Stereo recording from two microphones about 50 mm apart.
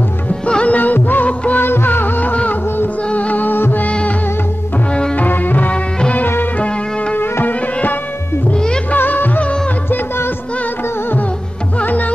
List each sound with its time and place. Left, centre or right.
0.3 s music: left
0.7 s music: left
3.4 s music: left
3.8 s music: left
5.1 s music: left
5.7 s music: left
7.2 s music: left
8.9 s music: left
9.8 s music: left